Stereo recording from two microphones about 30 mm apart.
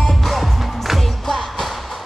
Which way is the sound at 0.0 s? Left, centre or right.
Centre.